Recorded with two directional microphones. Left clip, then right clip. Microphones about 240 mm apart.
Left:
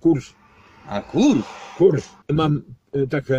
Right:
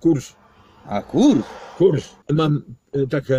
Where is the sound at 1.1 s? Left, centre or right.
Left.